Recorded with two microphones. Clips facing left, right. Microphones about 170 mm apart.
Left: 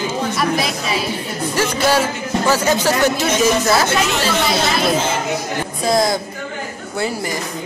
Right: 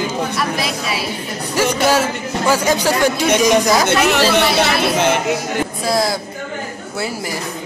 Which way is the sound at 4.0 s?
65° right (ahead or behind).